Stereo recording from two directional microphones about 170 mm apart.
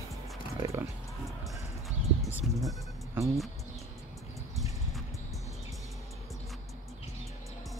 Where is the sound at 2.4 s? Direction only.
5° right (ahead or behind).